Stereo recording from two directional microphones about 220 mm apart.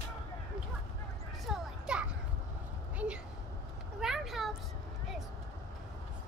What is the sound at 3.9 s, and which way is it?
Vehicle, centre (ahead or behind).